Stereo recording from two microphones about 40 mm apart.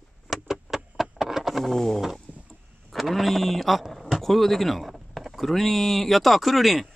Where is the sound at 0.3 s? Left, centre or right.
Centre.